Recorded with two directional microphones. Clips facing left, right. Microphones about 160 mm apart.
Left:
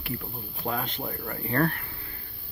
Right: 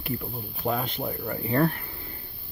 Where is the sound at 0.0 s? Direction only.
20° right (ahead or behind).